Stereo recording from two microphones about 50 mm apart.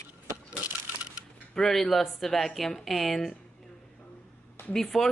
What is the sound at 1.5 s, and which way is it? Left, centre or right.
Speech, centre.